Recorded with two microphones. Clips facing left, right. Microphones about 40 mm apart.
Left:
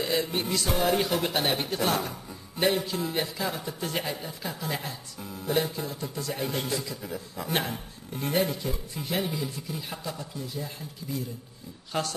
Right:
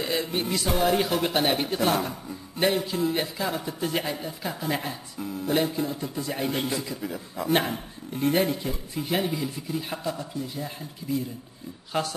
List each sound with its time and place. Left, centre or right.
0.0 s speech: centre
11.9 s speech: centre